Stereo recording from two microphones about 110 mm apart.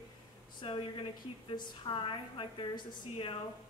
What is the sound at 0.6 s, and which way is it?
A woman's voice, 50° left (ahead or behind).